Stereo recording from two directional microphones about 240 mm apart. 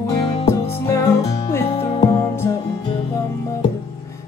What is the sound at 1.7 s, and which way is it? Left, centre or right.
Music, left.